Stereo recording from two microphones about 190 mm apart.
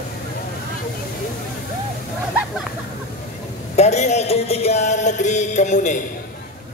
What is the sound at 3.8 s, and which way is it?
Music, 35° left (ahead or behind).